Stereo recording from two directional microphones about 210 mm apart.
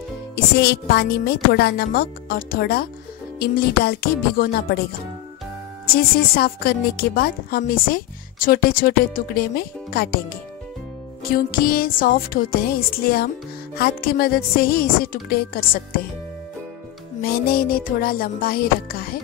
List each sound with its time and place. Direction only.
0.6 s a woman's voice: 50° left (ahead or behind)
5.9 s a woman's voice: 45° left (ahead or behind)
11.2 s a woman's voice: 45° left (ahead or behind)
17.2 s a woman's voice: 45° left (ahead or behind)